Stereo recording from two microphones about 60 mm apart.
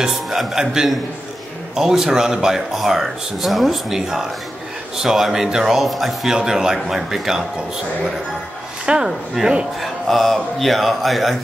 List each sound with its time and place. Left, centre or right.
0.0 s speech: centre
8.8 s speech: centre
9.8 s speech: centre